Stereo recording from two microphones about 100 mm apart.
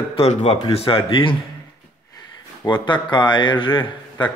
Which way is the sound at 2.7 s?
50° left (ahead or behind).